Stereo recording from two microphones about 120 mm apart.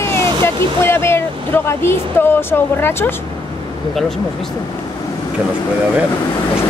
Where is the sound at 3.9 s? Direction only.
5° left (ahead or behind).